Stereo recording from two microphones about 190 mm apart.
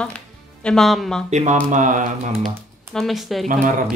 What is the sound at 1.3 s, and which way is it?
Speech, 40° right (ahead or behind).